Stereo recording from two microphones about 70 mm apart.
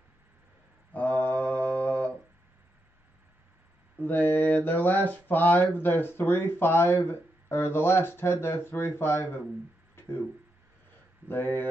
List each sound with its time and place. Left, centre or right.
0.9 s mantra: left
4.0 s speech: left
9.9 s a sound: left
11.2 s speech: left